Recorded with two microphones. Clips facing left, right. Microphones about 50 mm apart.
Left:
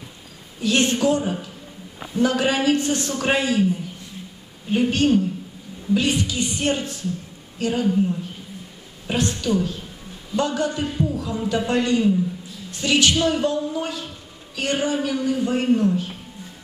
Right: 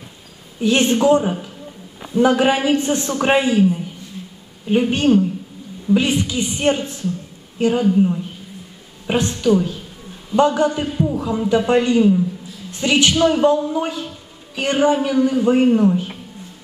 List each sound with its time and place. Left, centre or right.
0.6 s a man's voice: right
4.6 s a man's voice: right